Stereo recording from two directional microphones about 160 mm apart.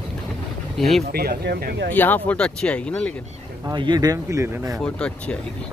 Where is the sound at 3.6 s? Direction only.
25° right (ahead or behind).